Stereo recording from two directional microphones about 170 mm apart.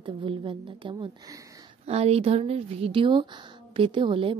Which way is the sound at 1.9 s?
35° right (ahead or behind).